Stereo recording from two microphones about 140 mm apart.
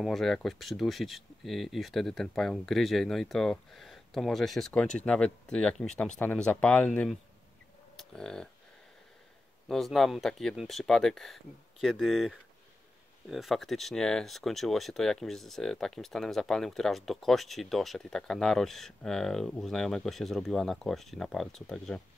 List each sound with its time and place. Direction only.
0.0 s speech: centre (ahead or behind)
9.7 s speech: centre (ahead or behind)